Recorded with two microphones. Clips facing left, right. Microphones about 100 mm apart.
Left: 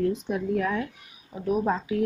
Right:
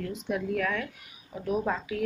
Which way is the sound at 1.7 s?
25° left (ahead or behind).